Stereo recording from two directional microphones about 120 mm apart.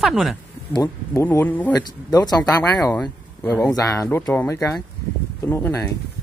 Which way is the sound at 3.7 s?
25° left (ahead or behind).